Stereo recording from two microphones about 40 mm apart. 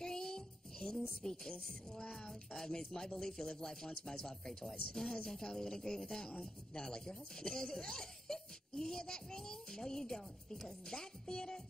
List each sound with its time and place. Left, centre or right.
0.0 s music: centre
2.1 s speech: centre